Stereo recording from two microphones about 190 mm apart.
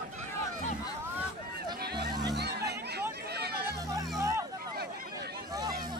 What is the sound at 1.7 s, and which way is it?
Music, 55° right (ahead or behind).